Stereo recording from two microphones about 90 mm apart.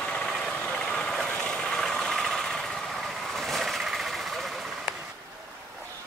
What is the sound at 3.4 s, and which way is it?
Vehicle, centre (ahead or behind).